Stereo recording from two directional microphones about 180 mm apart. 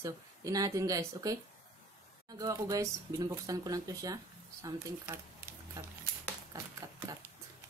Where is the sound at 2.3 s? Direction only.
20° right (ahead or behind).